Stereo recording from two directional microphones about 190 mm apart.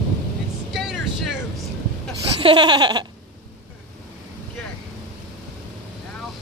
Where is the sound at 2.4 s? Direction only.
25° right (ahead or behind).